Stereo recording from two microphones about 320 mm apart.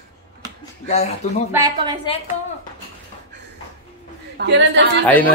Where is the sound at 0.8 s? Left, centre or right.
Left.